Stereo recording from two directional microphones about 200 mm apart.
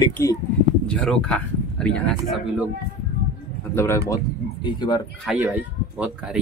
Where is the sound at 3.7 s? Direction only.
15° left (ahead or behind).